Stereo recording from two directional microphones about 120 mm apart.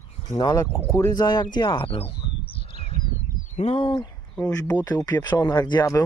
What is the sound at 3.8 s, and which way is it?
Speech, 35° left (ahead or behind).